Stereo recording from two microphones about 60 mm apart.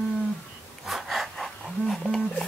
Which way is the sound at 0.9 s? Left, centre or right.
Centre.